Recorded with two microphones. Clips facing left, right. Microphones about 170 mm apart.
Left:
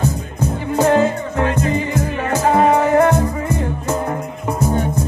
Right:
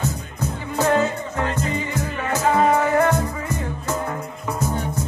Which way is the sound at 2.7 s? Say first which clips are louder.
Left 5 dB; 35° left (ahead or behind).